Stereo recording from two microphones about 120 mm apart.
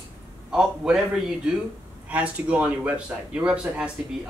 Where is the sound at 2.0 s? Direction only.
10° right (ahead or behind).